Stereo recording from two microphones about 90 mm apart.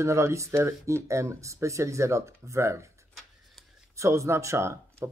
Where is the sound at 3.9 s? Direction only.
35° right (ahead or behind).